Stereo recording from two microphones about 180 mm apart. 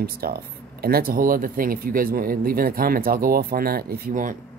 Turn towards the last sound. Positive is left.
turn(degrees=-50)  # may be behind; listen again after turning